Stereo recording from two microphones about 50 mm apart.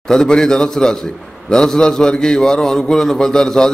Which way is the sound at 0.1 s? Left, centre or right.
Centre.